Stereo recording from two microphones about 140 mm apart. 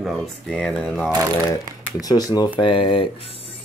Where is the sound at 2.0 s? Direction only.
25° left (ahead or behind).